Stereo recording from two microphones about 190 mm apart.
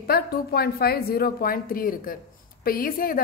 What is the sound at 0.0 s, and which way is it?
A woman's voice, 55° left (ahead or behind).